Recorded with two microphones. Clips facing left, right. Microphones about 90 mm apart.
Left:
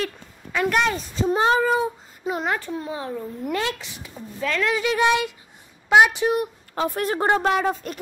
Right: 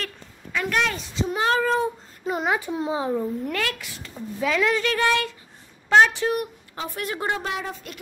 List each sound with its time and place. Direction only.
0.0 s a sound: 10° left (ahead or behind)
0.9 s a child's voice: 30° left (ahead or behind)
1.5 s a child's voice: 10° left (ahead or behind)
2.7 s a child's voice: 20° right (ahead or behind)
3.5 s speech: 25° left (ahead or behind)
4.4 s speech: 5° right (ahead or behind)
4.7 s speech: 15° left (ahead or behind)
6.7 s a woman's voice: 45° left (ahead or behind)